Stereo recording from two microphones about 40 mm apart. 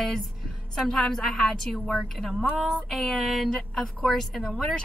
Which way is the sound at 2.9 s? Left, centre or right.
Centre.